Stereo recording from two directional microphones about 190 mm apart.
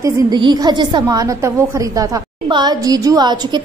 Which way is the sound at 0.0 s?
20° right (ahead or behind).